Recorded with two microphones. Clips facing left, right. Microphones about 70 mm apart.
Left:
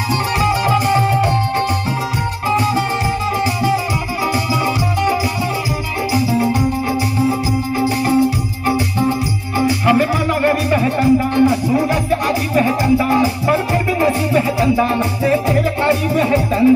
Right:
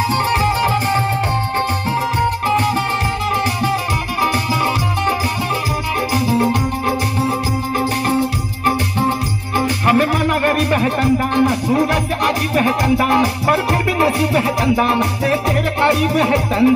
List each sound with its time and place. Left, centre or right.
0.1 s music: right
3.7 s music: right
6.1 s music: right
9.6 s music: right